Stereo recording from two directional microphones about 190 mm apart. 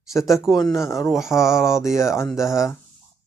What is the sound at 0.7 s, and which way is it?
Speech, 15° left (ahead or behind).